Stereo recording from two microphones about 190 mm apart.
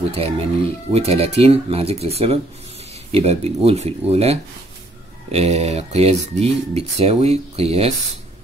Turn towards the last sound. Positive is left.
turn(degrees=-30)  # may be behind; listen again after turning